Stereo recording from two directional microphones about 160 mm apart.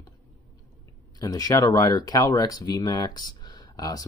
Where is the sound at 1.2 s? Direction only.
20° left (ahead or behind).